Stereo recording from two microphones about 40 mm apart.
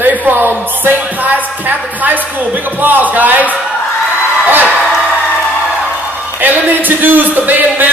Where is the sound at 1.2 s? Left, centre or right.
Right.